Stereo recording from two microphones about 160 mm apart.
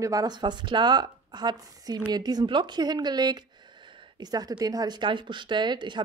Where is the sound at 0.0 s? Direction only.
20° right (ahead or behind).